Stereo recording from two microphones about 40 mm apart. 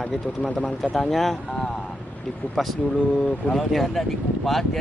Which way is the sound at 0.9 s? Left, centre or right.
Centre.